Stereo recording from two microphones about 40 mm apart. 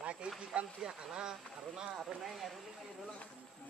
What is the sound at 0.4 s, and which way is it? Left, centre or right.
Speech, right.